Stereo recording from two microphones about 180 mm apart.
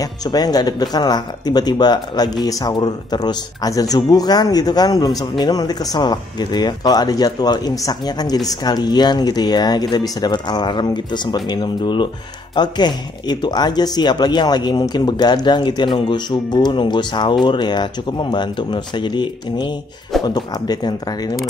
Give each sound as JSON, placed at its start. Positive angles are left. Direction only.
{"t": 0.3, "sound": "speech", "side_deg": 20}